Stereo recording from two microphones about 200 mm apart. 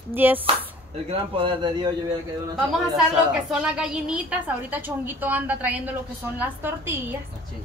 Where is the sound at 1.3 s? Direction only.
25° right (ahead or behind).